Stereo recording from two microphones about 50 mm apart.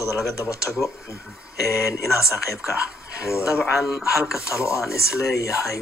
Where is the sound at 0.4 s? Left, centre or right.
Left.